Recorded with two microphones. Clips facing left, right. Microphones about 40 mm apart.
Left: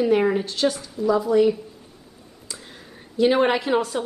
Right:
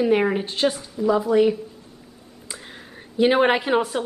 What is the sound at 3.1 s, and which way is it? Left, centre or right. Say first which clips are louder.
Speech: right 1 dB; right.